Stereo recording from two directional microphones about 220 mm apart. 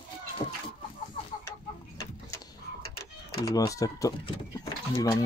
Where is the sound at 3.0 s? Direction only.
15° left (ahead or behind).